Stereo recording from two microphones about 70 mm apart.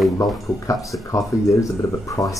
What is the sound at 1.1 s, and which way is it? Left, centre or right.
Speech, left.